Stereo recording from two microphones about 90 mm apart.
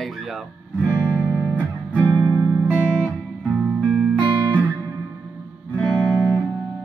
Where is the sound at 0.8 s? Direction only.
15° right (ahead or behind).